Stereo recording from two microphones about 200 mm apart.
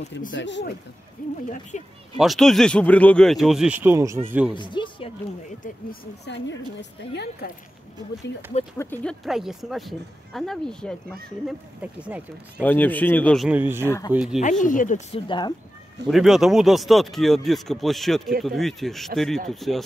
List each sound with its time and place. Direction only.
0.3 s a woman's voice: 65° left (ahead or behind)
1.7 s speech: 35° left (ahead or behind)
2.1 s speech: centre (ahead or behind)
4.6 s speech: 25° left (ahead or behind)
5.6 s a woman's voice: 50° left (ahead or behind)
8.7 s speech: 10° left (ahead or behind)
9.2 s speech: centre (ahead or behind)
12.6 s speech: 10° left (ahead or behind)
13.5 s speech: 10° right (ahead or behind)
14.4 s speech: 40° left (ahead or behind); by 15.5 s 25° left (ahead or behind)
16.1 s speech: centre (ahead or behind)